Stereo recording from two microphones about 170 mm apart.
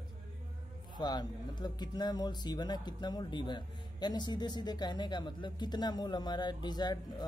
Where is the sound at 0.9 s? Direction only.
25° left (ahead or behind).